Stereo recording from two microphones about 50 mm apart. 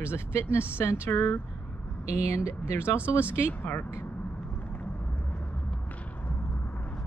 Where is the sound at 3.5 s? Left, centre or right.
Left.